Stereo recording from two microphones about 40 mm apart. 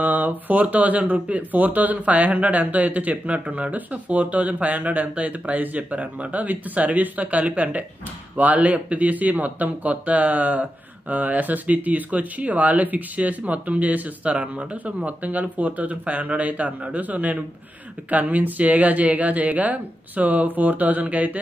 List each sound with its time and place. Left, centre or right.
0.0 s speech: right